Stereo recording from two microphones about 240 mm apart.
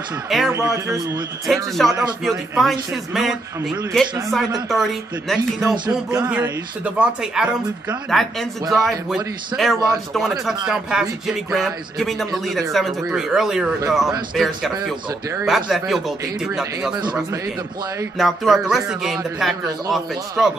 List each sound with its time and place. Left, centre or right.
0.3 s speech: centre
0.6 s a man's voice: centre
1.5 s speech: centre
16.9 s a man's voice: centre
18.1 s speech: centre